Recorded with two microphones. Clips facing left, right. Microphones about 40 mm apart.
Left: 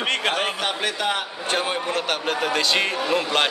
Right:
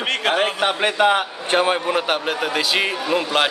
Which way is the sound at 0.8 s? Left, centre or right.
Right.